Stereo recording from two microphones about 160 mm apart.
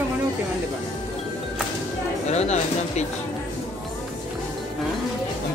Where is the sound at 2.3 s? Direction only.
45° left (ahead or behind).